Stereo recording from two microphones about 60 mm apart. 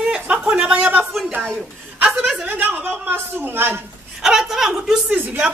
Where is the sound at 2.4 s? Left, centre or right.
Right.